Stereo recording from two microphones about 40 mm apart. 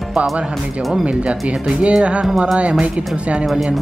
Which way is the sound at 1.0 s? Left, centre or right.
Right.